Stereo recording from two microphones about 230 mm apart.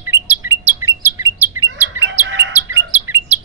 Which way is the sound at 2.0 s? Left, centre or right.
Right.